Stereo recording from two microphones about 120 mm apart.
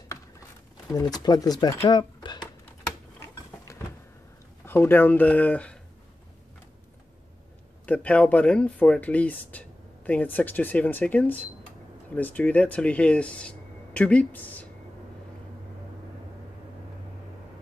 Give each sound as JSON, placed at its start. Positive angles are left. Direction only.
{"t": 1.1, "sound": "speech", "side_deg": 35}
{"t": 3.2, "sound": "a sound", "side_deg": 20}
{"t": 4.6, "sound": "speech", "side_deg": 15}
{"t": 7.8, "sound": "speech", "side_deg": 10}